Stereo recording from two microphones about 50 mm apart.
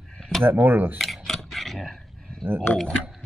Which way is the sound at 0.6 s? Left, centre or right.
Right.